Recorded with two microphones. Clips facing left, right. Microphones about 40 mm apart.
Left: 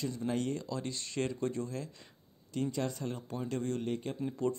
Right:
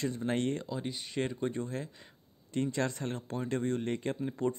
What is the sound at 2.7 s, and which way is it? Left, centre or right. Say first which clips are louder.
Speech: right 2 dB; right.